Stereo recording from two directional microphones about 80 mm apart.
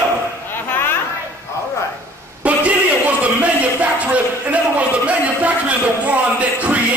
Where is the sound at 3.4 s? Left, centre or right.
Centre.